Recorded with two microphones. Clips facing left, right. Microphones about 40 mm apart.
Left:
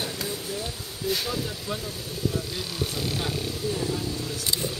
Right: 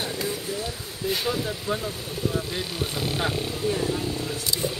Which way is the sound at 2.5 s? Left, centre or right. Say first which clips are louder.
Right 2 dB; right.